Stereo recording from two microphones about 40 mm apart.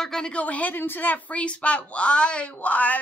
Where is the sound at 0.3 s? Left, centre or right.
Left.